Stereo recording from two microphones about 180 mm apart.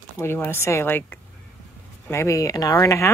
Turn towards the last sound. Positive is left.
turn(degrees=15)  # may be behind; listen again after turning